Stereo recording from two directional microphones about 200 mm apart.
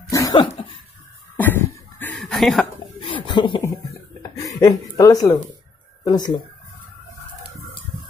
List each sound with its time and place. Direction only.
0.1 s cough: 15° left (ahead or behind)
0.4 s dog: 25° left (ahead or behind)
1.3 s cough: 10° left (ahead or behind)
3.0 s a sound: 25° left (ahead or behind)
4.6 s speech: 20° left (ahead or behind)